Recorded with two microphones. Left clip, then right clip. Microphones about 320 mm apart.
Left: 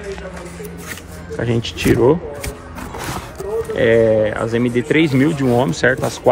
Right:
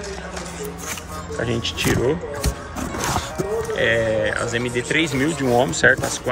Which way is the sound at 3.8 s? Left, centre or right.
Centre.